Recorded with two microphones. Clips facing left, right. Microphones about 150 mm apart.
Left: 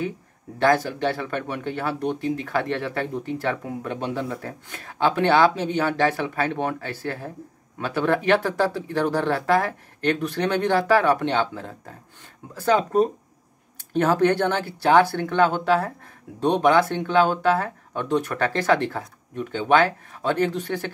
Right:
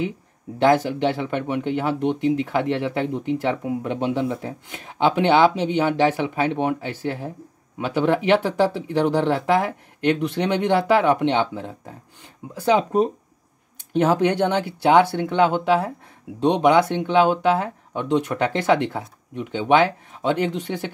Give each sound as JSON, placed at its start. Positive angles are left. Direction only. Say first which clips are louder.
{"t": 0.6, "sound": "speech", "louder": "right 3 dB", "side_deg": -20}